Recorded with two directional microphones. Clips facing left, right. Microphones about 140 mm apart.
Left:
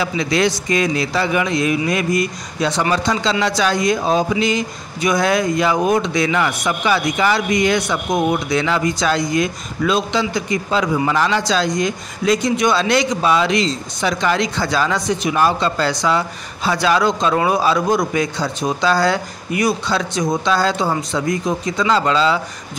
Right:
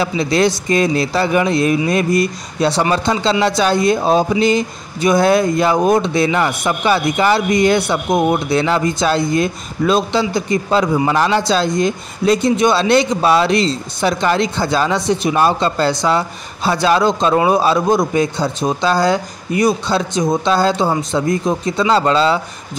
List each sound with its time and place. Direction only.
0.0 s a man's voice: 35° right (ahead or behind)